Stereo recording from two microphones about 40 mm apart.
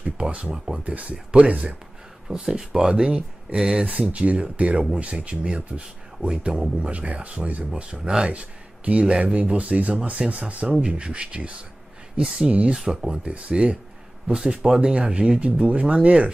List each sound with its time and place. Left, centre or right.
0.0 s speech: right
2.2 s speech: centre
3.5 s speech: centre
4.1 s speech: right
7.7 s speech: right
8.3 s speech: right
12.2 s speech: centre
12.4 s speech: right
14.3 s speech: centre